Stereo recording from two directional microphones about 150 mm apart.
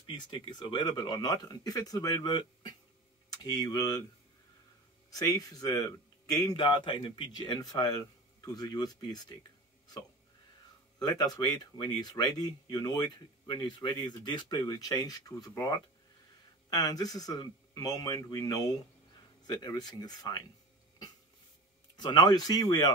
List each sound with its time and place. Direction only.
0.0 s speech: 30° left (ahead or behind)
5.1 s speech: 25° left (ahead or behind)
11.0 s speech: 25° left (ahead or behind)
21.9 s speech: 30° left (ahead or behind)